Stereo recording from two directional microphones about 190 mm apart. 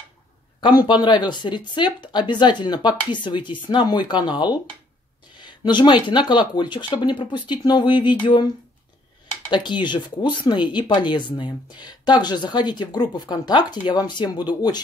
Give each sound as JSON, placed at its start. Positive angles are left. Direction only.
{"t": 0.6, "sound": "speech", "side_deg": 25}
{"t": 5.4, "sound": "a sound", "side_deg": 25}
{"t": 6.0, "sound": "speech", "side_deg": 25}
{"t": 9.5, "sound": "speech", "side_deg": 25}